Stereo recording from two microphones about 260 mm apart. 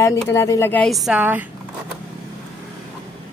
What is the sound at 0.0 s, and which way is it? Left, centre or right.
A woman's voice, centre.